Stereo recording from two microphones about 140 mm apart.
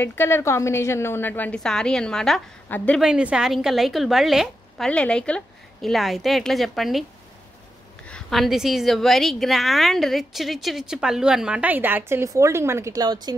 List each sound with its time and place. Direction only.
0.0 s a woman's voice: 15° left (ahead or behind)
3.0 s a woman's voice: 5° right (ahead or behind)
8.1 s a woman's voice: centre (ahead or behind); by 13.3 s 30° right (ahead or behind)